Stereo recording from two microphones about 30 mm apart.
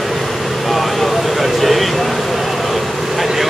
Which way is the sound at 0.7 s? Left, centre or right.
Centre.